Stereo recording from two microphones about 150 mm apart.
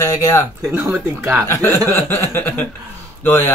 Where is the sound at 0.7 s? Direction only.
15° right (ahead or behind).